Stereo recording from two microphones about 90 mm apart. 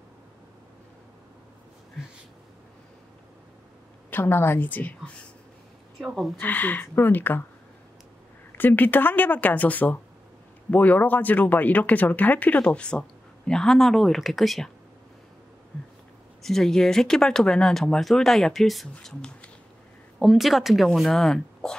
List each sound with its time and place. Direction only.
4.1 s speech: 25° left (ahead or behind)
5.9 s speech: centre (ahead or behind)
6.4 s speech: 20° left (ahead or behind)
8.5 s speech: 20° left (ahead or behind); by 14.7 s centre (ahead or behind)
16.4 s speech: 5° left (ahead or behind)